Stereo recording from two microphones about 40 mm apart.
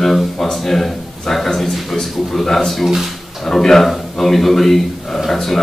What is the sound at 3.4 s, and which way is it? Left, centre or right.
A man's voice, centre.